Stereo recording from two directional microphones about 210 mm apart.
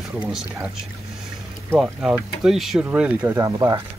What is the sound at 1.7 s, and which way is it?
Speech, 5° right (ahead or behind).